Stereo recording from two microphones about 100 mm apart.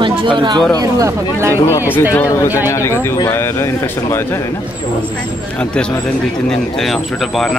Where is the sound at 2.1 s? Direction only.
25° left (ahead or behind).